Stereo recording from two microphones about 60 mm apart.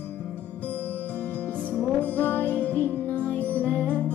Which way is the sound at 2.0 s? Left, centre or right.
Left.